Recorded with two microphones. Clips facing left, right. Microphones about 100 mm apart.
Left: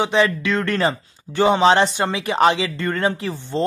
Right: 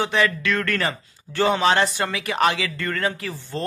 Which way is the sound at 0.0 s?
20° left (ahead or behind).